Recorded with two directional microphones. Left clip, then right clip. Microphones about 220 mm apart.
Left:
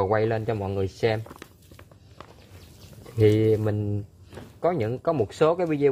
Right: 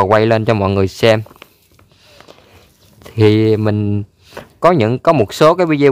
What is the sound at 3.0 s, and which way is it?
Speech, 35° right (ahead or behind).